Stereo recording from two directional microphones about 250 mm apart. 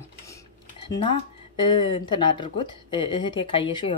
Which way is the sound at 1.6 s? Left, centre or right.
Centre.